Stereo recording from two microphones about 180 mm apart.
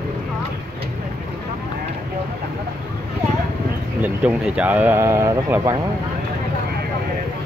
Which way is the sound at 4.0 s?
5° right (ahead or behind).